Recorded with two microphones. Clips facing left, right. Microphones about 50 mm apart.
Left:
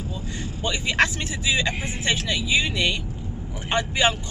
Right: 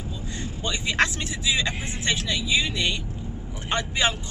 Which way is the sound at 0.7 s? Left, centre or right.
Centre.